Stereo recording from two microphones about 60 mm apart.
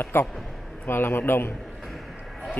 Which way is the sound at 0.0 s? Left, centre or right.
Left.